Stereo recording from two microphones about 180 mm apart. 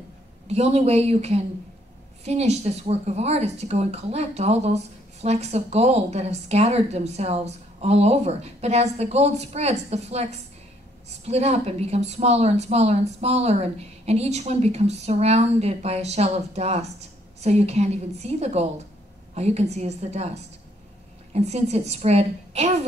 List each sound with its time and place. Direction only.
0.5 s speech: 35° right (ahead or behind)